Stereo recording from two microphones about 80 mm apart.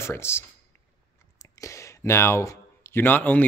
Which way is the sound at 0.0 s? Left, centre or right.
Left.